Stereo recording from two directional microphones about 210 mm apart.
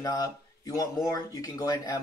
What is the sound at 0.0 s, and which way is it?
A man's voice, 15° left (ahead or behind).